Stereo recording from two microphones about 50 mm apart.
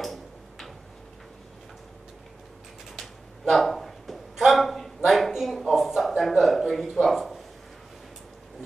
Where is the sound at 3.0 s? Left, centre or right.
Centre.